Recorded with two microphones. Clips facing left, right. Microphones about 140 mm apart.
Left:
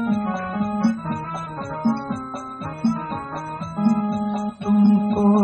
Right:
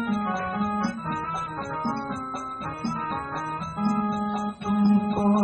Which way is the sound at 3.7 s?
20° left (ahead or behind).